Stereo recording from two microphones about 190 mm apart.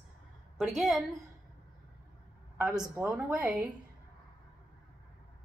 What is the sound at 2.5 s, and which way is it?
A woman's voice, 5° right (ahead or behind).